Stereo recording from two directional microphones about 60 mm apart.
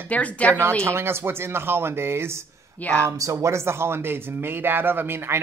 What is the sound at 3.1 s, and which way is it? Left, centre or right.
Speech, right.